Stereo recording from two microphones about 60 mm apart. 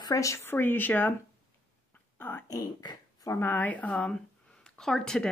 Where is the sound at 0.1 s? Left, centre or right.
Left.